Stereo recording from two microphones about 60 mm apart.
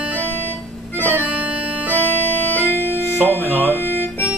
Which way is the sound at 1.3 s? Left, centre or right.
Right.